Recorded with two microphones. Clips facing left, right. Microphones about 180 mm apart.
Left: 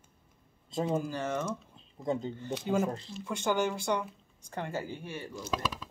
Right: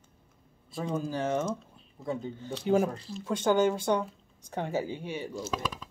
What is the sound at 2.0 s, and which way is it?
Speech, 20° left (ahead or behind).